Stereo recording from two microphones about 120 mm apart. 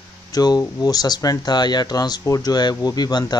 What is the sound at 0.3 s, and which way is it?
Speech, 30° left (ahead or behind).